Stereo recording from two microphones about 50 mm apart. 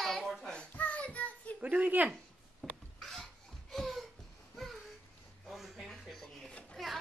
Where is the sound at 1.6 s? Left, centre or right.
Right.